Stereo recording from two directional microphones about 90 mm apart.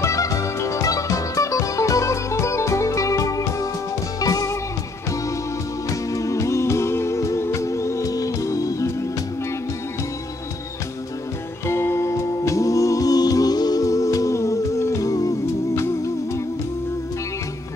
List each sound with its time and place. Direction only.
0.0 s music: 35° left (ahead or behind)
5.9 s music: 40° left (ahead or behind)
11.6 s music: 30° left (ahead or behind)